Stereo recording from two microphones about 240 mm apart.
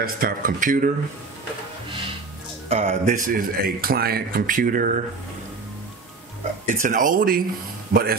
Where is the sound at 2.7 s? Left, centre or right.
Right.